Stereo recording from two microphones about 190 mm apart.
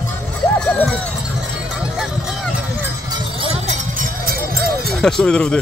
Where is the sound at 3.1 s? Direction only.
30° right (ahead or behind); by 4.7 s 50° right (ahead or behind).